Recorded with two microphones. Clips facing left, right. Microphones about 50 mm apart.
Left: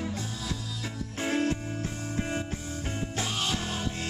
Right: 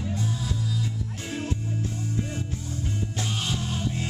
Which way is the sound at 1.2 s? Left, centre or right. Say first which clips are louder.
Left 6 dB; left.